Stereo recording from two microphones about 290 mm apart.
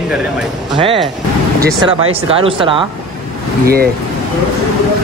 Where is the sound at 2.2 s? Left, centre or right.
Centre.